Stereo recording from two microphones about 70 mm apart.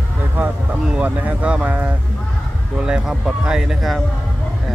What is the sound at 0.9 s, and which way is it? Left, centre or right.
Speech, right.